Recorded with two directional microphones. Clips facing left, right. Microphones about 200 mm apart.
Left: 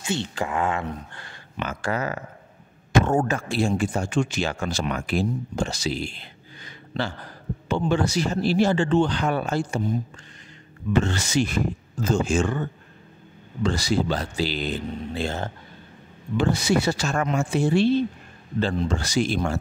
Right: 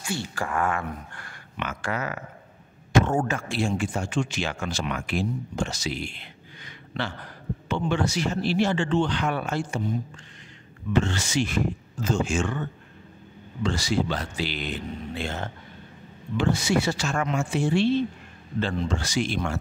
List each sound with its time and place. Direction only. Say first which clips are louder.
0.0 s speech: left 3 dB; 20° left (ahead or behind)
11.1 s speech: left 3 dB; 40° left (ahead or behind)